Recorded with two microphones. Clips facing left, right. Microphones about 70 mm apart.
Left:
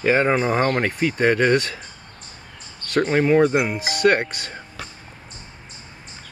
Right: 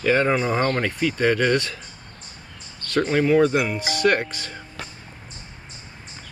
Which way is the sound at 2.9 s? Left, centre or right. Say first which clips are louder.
Left 1 dB; left.